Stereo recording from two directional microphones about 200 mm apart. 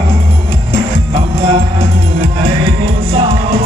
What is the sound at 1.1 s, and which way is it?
Music, 30° right (ahead or behind).